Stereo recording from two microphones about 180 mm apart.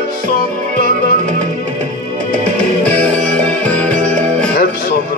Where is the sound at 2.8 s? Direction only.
5° left (ahead or behind).